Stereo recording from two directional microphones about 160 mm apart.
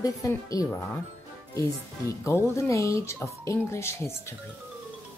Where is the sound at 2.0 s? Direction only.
20° left (ahead or behind).